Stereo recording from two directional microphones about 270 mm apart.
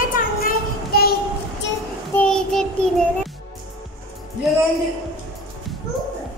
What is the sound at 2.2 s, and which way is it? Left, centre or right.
Child singing, centre.